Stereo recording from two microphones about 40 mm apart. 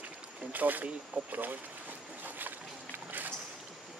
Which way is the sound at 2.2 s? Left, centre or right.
Right.